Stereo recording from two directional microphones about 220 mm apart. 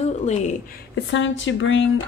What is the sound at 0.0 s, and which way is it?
Speech, 30° left (ahead or behind).